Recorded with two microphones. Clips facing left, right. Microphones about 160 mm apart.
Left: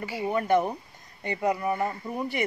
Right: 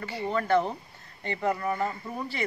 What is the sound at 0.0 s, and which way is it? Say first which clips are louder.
Speech: left 2 dB; 10° left (ahead or behind).